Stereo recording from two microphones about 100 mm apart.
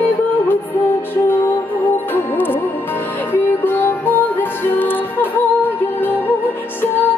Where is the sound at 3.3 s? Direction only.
20° left (ahead or behind).